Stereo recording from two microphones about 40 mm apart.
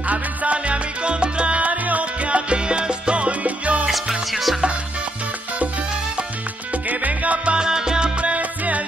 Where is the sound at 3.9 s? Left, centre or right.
Centre.